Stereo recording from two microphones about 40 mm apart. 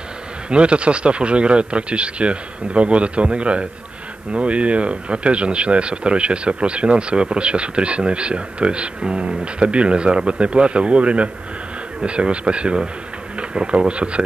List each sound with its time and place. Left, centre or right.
0.5 s speech: right